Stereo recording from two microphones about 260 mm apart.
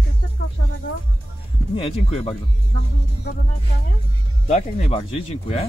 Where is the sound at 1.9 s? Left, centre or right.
Left.